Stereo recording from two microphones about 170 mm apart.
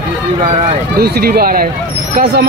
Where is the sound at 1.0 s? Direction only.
65° right (ahead or behind).